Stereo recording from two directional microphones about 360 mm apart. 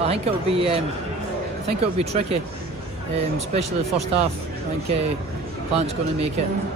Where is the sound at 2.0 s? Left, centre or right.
Centre.